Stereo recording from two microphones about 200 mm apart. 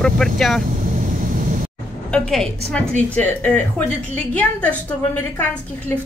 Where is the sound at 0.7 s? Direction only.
40° right (ahead or behind).